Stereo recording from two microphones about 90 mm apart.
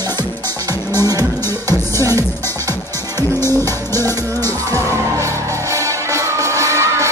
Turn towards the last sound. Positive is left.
turn(degrees=-35)  # may be behind; listen again after turning